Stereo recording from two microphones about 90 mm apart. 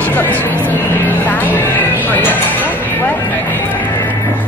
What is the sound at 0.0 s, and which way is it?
Speech, 20° left (ahead or behind).